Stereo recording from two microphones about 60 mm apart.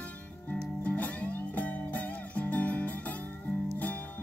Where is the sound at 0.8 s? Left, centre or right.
Left.